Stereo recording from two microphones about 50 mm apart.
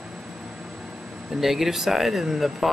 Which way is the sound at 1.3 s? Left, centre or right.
Centre.